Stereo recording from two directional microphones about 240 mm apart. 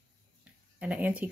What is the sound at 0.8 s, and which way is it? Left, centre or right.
Speech, centre.